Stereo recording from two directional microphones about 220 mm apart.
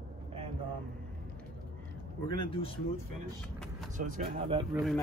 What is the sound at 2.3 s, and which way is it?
Speech, 25° left (ahead or behind).